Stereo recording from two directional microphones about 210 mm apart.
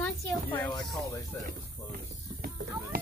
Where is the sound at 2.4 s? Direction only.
45° right (ahead or behind).